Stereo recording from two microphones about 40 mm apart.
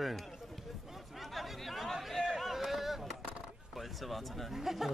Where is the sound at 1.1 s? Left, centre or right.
Centre.